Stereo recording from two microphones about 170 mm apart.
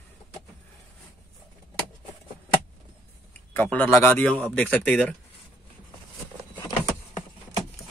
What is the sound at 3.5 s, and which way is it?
Speech, 10° left (ahead or behind).